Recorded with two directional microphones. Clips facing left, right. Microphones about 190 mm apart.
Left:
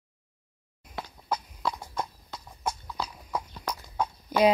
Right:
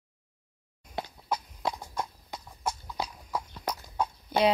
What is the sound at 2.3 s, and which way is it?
Clip-clop, 15° right (ahead or behind).